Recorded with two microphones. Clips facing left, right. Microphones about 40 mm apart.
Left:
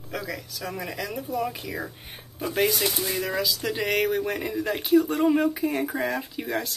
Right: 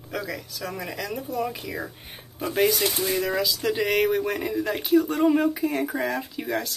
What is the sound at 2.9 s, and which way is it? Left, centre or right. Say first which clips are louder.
Speech: right 2 dB; right.